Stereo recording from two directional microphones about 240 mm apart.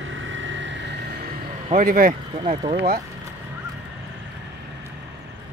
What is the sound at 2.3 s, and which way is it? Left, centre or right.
Speech, centre.